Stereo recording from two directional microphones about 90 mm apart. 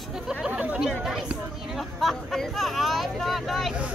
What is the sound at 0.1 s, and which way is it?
Chatter, 5° right (ahead or behind).